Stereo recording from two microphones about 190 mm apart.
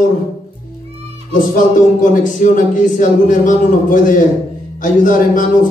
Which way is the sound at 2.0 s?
40° left (ahead or behind).